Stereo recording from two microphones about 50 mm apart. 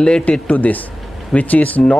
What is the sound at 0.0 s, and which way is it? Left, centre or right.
Speech, left.